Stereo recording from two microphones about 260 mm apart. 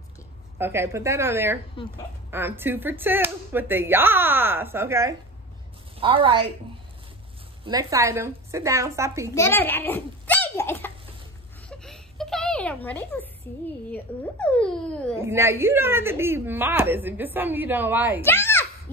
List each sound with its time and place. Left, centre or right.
0.6 s a woman's voice: centre
7.6 s speech: centre
9.3 s a child's voice: centre
11.7 s a sound: centre
13.9 s speech: centre
15.1 s speech: centre
18.2 s speech: centre